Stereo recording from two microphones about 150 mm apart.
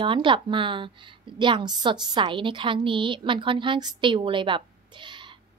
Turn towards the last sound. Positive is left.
turn(degrees=-30)  # may be behind; listen again after turning